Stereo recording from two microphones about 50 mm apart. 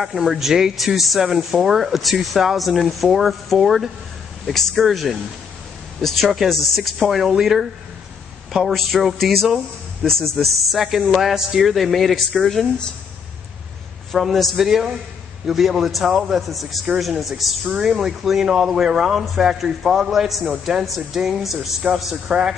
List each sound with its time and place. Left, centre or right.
0.0 s speech: centre
8.7 s speech: centre
10.3 s speech: centre
14.1 s speech: centre
21.8 s speech: centre